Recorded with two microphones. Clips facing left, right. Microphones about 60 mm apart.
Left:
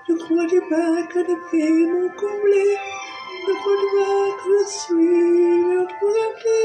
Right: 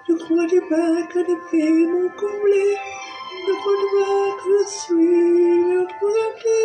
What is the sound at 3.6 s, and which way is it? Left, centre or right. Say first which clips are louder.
Speech: left 1 dB; left.